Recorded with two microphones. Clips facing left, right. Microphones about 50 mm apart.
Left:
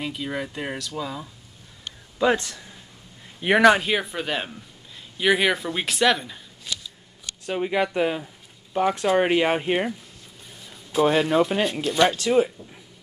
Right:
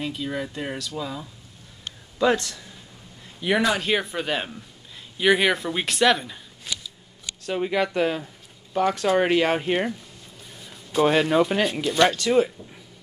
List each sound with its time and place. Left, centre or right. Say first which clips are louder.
0.0 s speech: even; centre
3.3 s speech: left 2 dB; left
3.8 s speech: right 1 dB; centre
7.4 s speech: even; centre
10.6 s a sound: even; centre
11.1 s speech: right 1 dB; centre
12.0 s speech: even; centre